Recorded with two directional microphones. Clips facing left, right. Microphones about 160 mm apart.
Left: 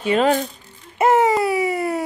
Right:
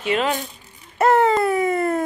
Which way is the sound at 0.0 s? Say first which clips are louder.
Left 4 dB; 40° left (ahead or behind).